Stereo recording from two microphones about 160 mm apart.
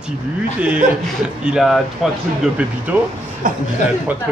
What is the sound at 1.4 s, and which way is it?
Speech, 5° right (ahead or behind).